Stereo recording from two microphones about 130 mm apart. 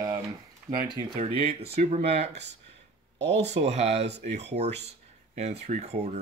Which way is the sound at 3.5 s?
60° right (ahead or behind).